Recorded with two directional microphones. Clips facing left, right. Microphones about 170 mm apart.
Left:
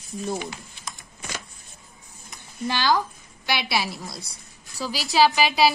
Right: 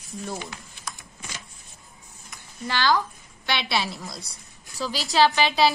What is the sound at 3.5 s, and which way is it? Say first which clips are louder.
A woman's voice: left 1 dB; 10° left (ahead or behind).